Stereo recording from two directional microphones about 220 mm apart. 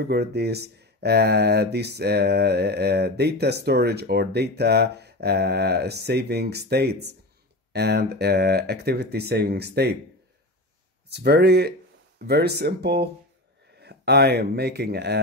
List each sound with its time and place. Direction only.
0.0 s speech: 45° right (ahead or behind)
11.1 s speech: 50° right (ahead or behind)